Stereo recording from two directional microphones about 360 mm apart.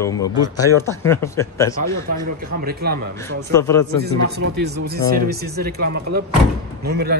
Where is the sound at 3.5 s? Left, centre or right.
Centre.